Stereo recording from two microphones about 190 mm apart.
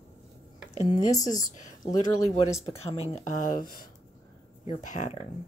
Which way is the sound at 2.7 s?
30° left (ahead or behind).